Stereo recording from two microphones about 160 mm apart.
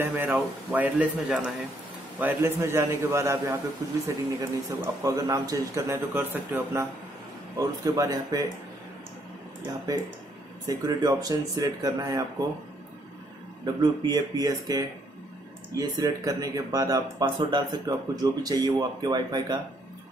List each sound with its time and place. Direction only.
0.0 s a man's voice: 15° right (ahead or behind)
10.7 s speech: 25° right (ahead or behind)
14.0 s speech: 25° right (ahead or behind)